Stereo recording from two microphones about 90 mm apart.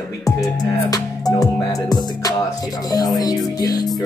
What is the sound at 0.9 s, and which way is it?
Music, 45° left (ahead or behind).